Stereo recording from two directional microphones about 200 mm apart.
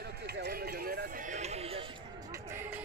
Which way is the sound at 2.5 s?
10° right (ahead or behind).